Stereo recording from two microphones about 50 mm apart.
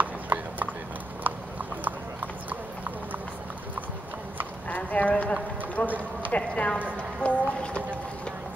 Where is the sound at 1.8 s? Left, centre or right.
Right.